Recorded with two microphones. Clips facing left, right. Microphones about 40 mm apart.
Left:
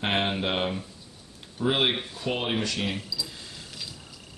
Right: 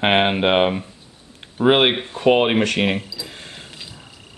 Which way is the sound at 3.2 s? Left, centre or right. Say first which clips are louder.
Right 5 dB; right.